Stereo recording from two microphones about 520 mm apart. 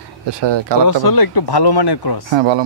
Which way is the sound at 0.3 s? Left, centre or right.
Right.